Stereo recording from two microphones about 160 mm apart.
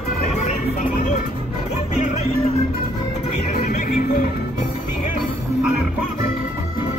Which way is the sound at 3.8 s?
60° left (ahead or behind).